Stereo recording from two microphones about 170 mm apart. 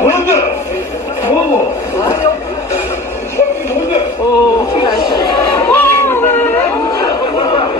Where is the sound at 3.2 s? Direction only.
15° left (ahead or behind).